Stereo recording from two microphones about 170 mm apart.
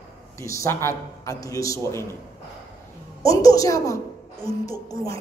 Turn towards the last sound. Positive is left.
turn(degrees=20)  # may be behind; listen again after turning